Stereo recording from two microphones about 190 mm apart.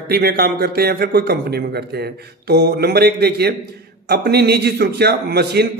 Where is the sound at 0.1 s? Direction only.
55° right (ahead or behind).